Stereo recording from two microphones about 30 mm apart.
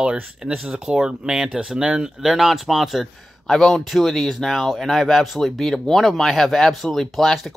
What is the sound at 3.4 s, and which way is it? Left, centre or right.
Speech, centre.